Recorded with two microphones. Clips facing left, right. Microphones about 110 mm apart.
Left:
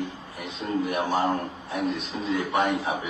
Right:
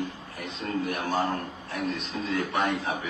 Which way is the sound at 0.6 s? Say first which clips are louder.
Left 3 dB; 20° left (ahead or behind).